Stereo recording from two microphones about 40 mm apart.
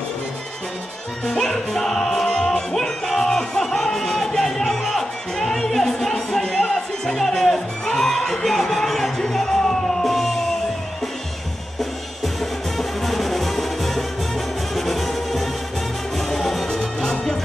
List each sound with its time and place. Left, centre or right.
1.2 s music: centre
7.2 s music: centre
12.4 s music: centre
16.6 s music: centre